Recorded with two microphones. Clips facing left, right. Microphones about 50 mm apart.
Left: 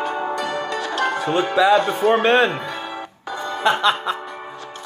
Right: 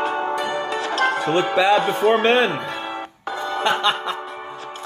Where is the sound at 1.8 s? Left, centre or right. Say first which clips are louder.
Even; right.